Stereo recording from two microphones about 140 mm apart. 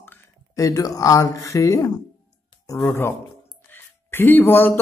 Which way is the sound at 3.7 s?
15° left (ahead or behind).